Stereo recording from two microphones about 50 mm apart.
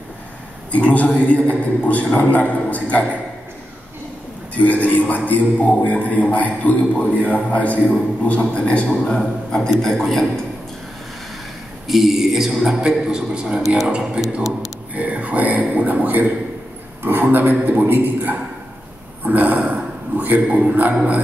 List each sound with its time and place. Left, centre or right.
0.7 s a man's voice: left
4.6 s a man's voice: left; by 10.4 s centre
11.9 s a man's voice: centre
12.8 s a man's voice: centre; by 20.9 s right